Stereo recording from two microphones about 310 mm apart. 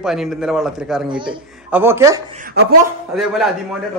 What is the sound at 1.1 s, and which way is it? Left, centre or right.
Speech, centre.